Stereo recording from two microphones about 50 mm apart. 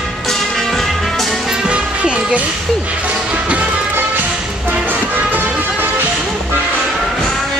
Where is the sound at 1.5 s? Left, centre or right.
Centre.